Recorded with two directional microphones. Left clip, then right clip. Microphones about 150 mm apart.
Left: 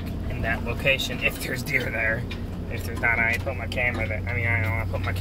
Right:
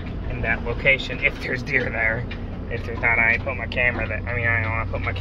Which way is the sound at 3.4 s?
25° left (ahead or behind).